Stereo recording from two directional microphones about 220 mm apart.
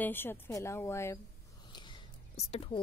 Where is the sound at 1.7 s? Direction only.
20° left (ahead or behind).